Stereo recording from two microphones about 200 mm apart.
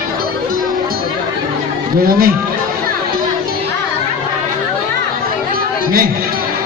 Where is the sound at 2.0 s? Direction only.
50° right (ahead or behind).